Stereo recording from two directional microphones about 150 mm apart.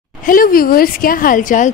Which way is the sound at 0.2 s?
70° left (ahead or behind).